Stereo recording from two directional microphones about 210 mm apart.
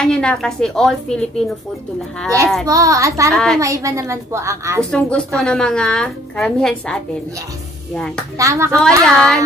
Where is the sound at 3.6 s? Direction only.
15° right (ahead or behind).